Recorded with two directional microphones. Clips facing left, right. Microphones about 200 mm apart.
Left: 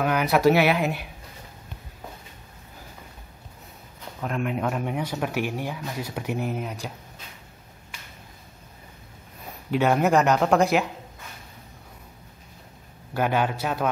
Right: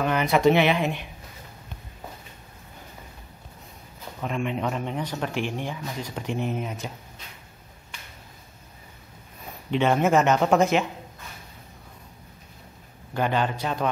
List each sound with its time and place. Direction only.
0.0 s speech: 5° left (ahead or behind)
4.2 s speech: centre (ahead or behind)
9.7 s speech: 5° left (ahead or behind)
13.1 s a man's voice: 10° left (ahead or behind)